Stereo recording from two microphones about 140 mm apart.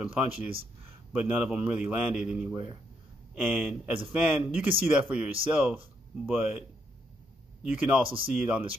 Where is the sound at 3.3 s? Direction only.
10° right (ahead or behind).